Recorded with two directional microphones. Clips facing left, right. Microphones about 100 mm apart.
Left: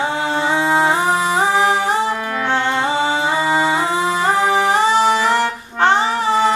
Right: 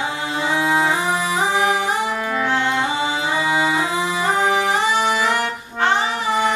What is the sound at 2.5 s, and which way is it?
Music, 30° left (ahead or behind).